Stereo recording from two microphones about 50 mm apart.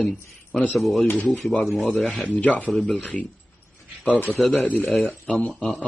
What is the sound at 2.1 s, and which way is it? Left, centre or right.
Speech, left.